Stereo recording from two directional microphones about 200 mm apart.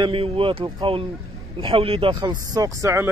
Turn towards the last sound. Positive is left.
turn(degrees=-15)  # may be behind; listen again after turning